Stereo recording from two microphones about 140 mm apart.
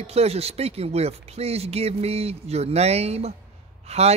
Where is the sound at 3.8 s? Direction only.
50° right (ahead or behind).